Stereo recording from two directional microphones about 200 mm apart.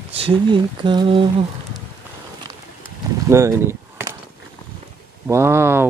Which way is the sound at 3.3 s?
15° right (ahead or behind).